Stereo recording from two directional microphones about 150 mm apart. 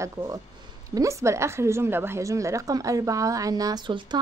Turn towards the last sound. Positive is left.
turn(degrees=-30)  # may be behind; listen again after turning